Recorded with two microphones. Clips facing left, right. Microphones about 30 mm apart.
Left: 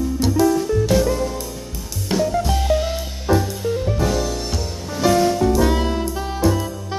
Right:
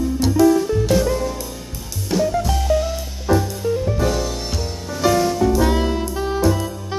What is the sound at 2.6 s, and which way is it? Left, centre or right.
Music, left.